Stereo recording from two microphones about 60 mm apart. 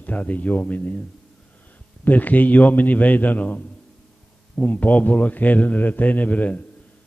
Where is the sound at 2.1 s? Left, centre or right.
Left.